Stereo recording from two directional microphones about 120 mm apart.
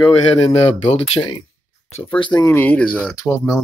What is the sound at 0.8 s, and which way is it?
Speech, 60° left (ahead or behind).